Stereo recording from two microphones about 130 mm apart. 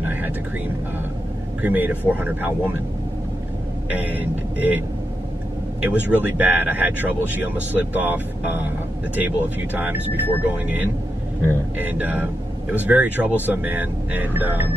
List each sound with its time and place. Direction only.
0.0 s vehicle: 15° right (ahead or behind)
1.6 s speech: 15° right (ahead or behind)
3.9 s speech: 10° right (ahead or behind)